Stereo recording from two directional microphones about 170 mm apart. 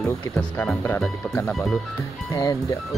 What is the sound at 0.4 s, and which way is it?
Speech, 5° left (ahead or behind).